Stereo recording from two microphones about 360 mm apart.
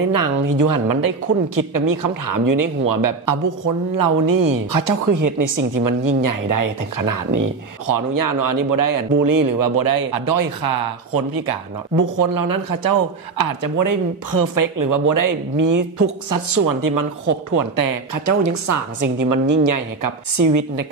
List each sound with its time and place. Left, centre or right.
0.1 s speech: right
12.0 s a woman's voice: right